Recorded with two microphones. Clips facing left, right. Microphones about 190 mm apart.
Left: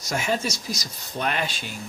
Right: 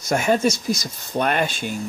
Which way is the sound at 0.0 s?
55° right (ahead or behind).